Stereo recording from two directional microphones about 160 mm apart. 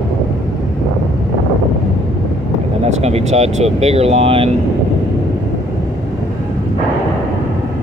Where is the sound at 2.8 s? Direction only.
40° right (ahead or behind).